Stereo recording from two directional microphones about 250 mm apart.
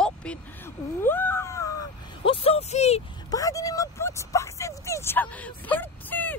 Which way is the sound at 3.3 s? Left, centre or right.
Centre.